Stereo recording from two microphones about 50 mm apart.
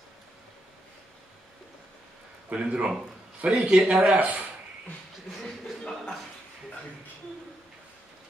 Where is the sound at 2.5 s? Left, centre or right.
Right.